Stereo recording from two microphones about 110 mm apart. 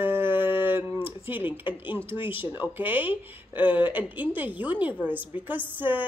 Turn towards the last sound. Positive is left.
turn(degrees=-15)  # may be behind; listen again after turning